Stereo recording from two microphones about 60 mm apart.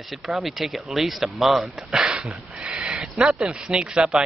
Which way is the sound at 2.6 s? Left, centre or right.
Centre.